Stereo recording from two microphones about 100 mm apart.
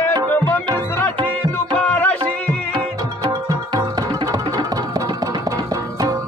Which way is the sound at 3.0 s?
35° right (ahead or behind).